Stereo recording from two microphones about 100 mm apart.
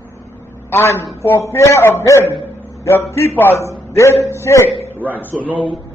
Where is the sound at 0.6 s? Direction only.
25° left (ahead or behind).